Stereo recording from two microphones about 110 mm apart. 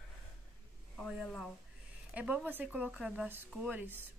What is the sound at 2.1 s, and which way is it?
A woman's voice, 10° right (ahead or behind).